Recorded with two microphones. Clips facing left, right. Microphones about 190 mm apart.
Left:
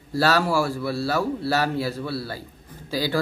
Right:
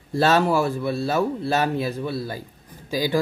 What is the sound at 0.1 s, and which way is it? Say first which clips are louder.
Speech: right 2 dB; 20° right (ahead or behind).